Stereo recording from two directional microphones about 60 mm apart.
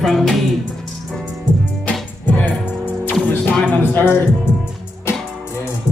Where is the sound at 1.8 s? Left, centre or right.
Left.